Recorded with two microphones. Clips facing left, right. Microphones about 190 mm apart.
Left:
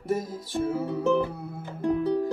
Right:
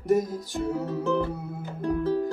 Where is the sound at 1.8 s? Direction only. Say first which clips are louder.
Left 1 dB; 15° left (ahead or behind).